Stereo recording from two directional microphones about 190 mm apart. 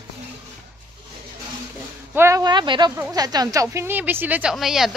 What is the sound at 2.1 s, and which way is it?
Speech, 15° right (ahead or behind).